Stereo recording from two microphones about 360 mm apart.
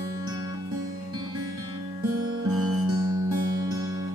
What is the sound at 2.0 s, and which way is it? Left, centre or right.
Music, right.